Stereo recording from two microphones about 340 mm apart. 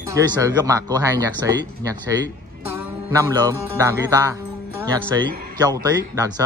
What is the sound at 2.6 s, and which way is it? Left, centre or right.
Music, centre.